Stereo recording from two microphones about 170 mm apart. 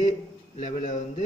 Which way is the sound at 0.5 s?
45° left (ahead or behind).